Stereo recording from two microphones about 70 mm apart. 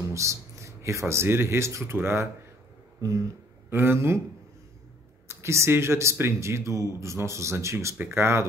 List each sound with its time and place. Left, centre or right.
0.1 s speech: right
3.0 s speech: right
3.7 s speech: right
5.3 s speech: right